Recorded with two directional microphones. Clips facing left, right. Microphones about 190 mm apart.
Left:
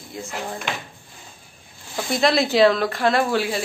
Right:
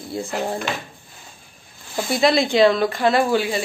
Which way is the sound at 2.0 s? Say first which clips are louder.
Right 2 dB; centre (ahead or behind).